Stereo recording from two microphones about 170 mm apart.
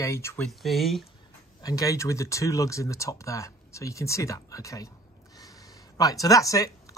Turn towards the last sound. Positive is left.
turn(degrees=20)  # may be behind; listen again after turning